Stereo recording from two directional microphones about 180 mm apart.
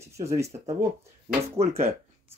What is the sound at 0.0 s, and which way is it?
Speech, 15° right (ahead or behind).